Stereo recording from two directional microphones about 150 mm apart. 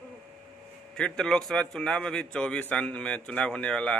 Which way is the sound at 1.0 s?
5° left (ahead or behind).